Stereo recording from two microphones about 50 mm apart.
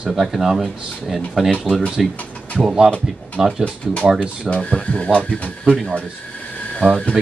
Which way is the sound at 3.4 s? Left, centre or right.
Centre.